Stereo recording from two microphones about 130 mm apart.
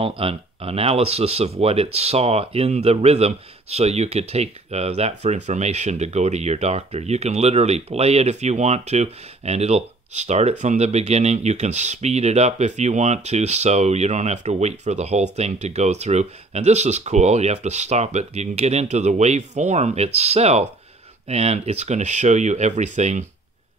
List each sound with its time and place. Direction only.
0.0 s speech: 45° right (ahead or behind); by 23.2 s 60° right (ahead or behind)